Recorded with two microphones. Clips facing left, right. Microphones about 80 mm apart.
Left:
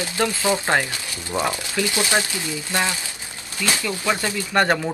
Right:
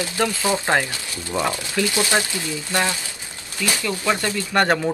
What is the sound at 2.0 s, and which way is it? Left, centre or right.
Speech, right.